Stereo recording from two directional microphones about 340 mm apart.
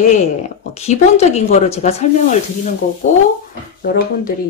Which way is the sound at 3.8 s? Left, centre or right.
Left.